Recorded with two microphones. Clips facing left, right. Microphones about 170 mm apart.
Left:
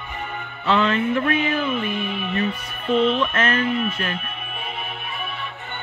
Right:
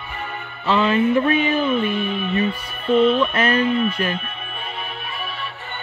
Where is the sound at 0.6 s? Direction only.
5° right (ahead or behind).